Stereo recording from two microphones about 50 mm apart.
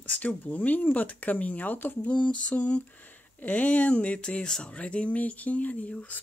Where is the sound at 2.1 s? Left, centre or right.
Left.